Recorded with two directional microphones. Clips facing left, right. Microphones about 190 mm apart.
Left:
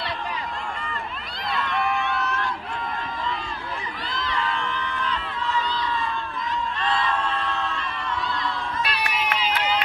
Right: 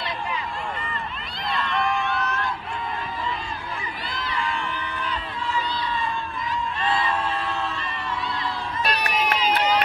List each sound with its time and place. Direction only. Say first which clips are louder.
1.5 s run: even; 5° left (ahead or behind)
4.1 s crowd: left 1 dB; 10° right (ahead or behind)
6.8 s a sound: right 1 dB; 5° right (ahead or behind)
8.8 s run: right 5 dB; 45° right (ahead or behind)